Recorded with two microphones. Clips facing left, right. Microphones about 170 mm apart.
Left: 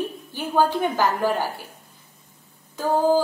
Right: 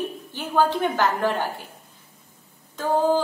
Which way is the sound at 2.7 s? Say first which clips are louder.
Left 1 dB; 10° left (ahead or behind).